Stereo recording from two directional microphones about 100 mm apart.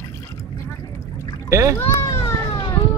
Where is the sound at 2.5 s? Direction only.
50° left (ahead or behind).